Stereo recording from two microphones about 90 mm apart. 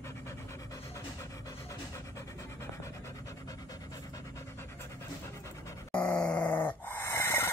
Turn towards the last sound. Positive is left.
turn(degrees=25)  # may be behind; listen again after turning